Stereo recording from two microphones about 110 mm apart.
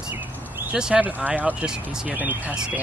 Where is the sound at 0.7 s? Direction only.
10° right (ahead or behind).